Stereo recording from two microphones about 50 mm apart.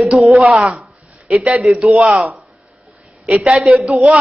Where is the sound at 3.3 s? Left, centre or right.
Right.